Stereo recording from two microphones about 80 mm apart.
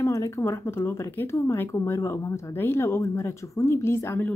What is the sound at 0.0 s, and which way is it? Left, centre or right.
Speech, left.